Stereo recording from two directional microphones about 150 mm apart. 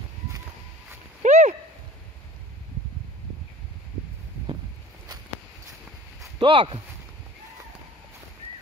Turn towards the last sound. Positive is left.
turn(degrees=-35)  # may be behind; listen again after turning